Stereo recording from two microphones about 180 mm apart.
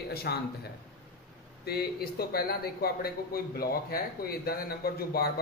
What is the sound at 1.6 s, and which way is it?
Speech, 60° left (ahead or behind).